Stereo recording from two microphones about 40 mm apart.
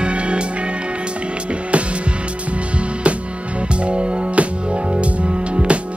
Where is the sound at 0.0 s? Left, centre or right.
Right.